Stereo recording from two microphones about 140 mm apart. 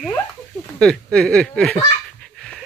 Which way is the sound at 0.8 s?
5° left (ahead or behind).